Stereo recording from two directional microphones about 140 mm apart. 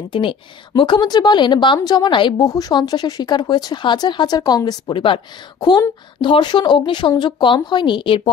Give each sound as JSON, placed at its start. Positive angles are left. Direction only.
{"t": 0.1, "sound": "a woman's voice", "side_deg": 35}